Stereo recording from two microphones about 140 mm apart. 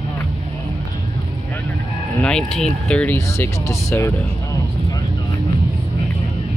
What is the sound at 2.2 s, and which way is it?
Speech, 5° left (ahead or behind).